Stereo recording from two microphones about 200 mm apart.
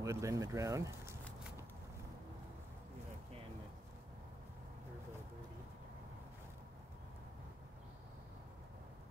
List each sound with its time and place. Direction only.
0.0 s speech: 15° right (ahead or behind)